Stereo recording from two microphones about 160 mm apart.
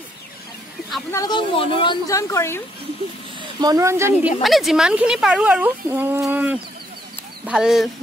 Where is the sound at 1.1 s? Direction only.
25° left (ahead or behind).